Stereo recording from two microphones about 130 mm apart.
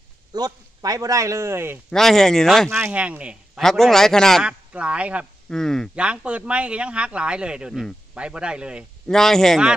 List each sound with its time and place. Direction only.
0.3 s speech: 30° right (ahead or behind)
1.9 s a man's voice: 5° left (ahead or behind)
2.7 s speech: 10° right (ahead or behind)
3.6 s a man's voice: 5° left (ahead or behind)
5.5 s a man's voice: 5° left (ahead or behind)
5.9 s speech: 10° right (ahead or behind)
9.0 s a man's voice: 5° left (ahead or behind)